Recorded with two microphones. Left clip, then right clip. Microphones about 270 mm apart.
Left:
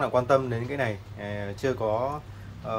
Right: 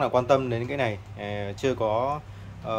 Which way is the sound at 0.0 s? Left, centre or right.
Centre.